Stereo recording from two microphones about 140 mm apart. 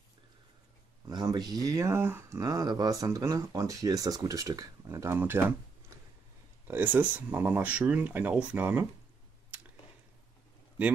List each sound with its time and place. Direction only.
1.0 s speech: 30° right (ahead or behind)
6.7 s speech: 10° right (ahead or behind)